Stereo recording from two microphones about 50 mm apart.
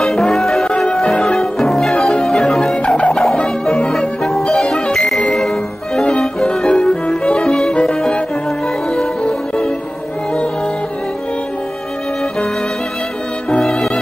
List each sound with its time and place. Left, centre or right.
0.3 s music: centre
13.5 s music: centre